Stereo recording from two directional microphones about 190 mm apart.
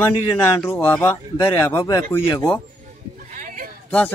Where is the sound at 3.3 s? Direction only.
45° right (ahead or behind).